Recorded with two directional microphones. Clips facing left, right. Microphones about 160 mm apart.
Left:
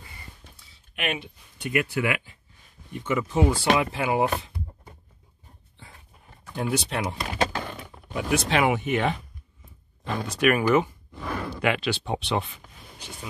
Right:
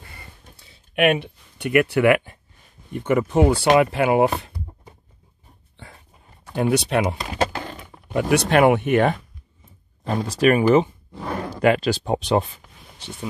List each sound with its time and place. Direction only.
0.9 s speech: 55° right (ahead or behind)
5.8 s dog: 70° right (ahead or behind)
6.5 s speech: 70° right (ahead or behind)
10.0 s speech: 35° right (ahead or behind)